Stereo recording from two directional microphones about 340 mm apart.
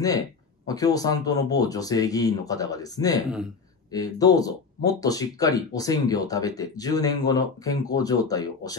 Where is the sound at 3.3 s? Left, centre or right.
Centre.